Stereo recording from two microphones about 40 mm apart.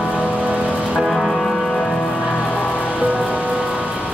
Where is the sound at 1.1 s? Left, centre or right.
Left.